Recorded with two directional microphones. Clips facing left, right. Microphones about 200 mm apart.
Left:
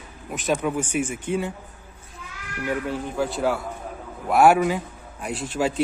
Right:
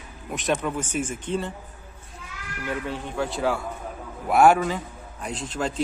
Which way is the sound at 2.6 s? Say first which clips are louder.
Left 3 dB; 5° left (ahead or behind).